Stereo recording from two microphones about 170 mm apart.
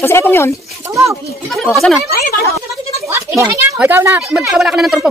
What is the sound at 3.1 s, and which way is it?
Speech, 15° right (ahead or behind).